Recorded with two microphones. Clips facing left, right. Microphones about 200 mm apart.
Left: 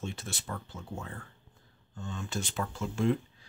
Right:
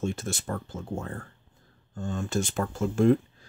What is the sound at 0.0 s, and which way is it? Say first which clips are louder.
Speech: right 9 dB; 50° right (ahead or behind).